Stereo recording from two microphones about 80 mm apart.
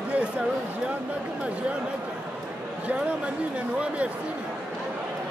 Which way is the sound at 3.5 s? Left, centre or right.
Centre.